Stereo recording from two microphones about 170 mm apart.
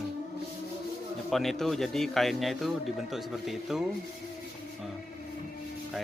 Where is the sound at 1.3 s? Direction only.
Centre (ahead or behind).